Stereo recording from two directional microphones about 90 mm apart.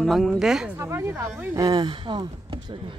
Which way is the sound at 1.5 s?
45° right (ahead or behind).